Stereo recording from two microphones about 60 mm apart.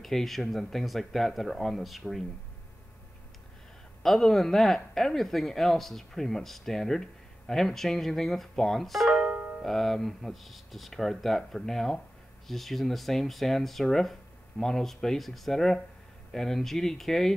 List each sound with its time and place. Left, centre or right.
0.0 s speech: centre
4.0 s speech: centre
9.1 s music: centre
9.6 s speech: centre